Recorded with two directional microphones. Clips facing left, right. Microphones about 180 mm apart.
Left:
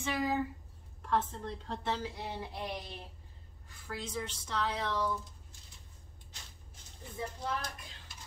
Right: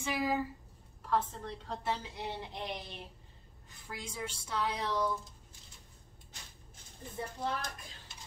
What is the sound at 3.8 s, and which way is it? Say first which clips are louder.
A woman's voice: left 3 dB; 10° right (ahead or behind).